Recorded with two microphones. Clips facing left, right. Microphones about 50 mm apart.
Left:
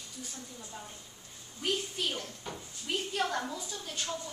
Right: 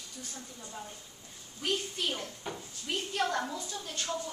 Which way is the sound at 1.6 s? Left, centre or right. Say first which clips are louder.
Even; centre.